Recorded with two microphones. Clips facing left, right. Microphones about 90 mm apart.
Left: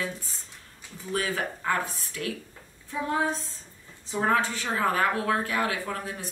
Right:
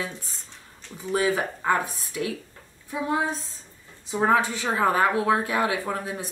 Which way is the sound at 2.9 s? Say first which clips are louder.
Right 1 dB; 15° right (ahead or behind).